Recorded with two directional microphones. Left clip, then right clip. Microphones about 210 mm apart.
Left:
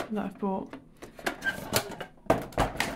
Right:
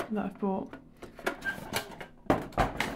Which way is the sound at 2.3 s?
10° left (ahead or behind).